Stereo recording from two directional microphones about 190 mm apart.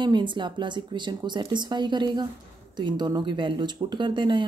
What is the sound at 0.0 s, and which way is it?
Speech, 25° right (ahead or behind).